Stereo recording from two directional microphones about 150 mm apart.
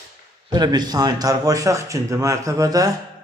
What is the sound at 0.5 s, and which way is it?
A man's voice, 25° right (ahead or behind).